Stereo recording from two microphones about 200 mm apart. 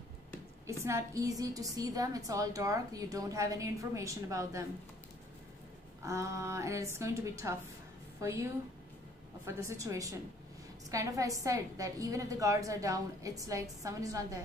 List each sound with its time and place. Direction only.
0.7 s a woman's voice: 15° right (ahead or behind)
6.0 s a woman's voice: 15° right (ahead or behind)
9.5 s a woman's voice: 15° right (ahead or behind)